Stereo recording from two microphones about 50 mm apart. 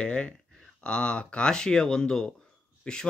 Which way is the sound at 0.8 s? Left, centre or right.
Left.